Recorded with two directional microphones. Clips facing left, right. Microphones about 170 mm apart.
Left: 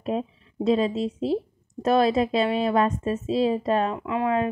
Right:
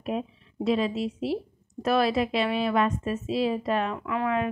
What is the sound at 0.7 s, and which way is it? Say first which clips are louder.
A woman's voice: left 3 dB; 30° left (ahead or behind).